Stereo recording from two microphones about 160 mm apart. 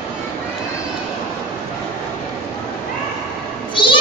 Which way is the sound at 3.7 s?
30° left (ahead or behind).